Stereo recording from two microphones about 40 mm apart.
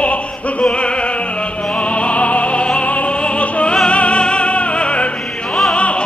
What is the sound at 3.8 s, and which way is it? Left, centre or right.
Music, left.